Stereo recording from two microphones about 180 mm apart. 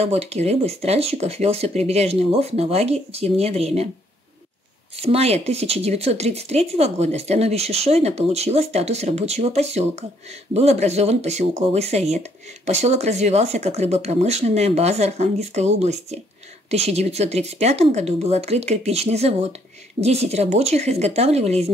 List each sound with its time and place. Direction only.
0.0 s speech: 35° right (ahead or behind)
4.9 s speech: 35° right (ahead or behind)